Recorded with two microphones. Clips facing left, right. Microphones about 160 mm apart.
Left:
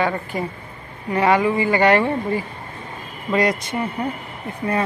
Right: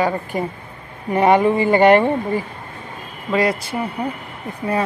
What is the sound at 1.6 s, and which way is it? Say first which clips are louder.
Speech: right 4 dB; 15° right (ahead or behind).